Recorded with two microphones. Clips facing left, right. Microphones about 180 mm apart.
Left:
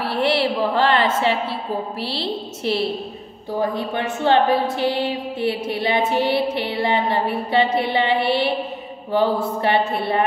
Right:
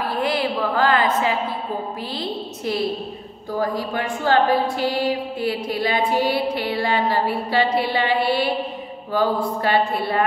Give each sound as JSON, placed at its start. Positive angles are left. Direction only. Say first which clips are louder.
{"t": 0.0, "sound": "a sound", "louder": "left 2 dB", "side_deg": 80}
{"t": 0.3, "sound": "a woman's voice", "louder": "left 4 dB", "side_deg": 30}
{"t": 2.6, "sound": "music", "louder": "left 1 dB", "side_deg": 30}